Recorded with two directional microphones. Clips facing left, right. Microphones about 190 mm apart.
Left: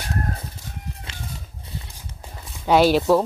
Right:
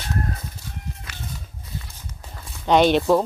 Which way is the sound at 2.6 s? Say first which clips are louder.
Even; 5° left (ahead or behind).